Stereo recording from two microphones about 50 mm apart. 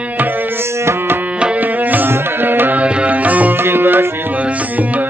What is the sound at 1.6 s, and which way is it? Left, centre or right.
Music, right.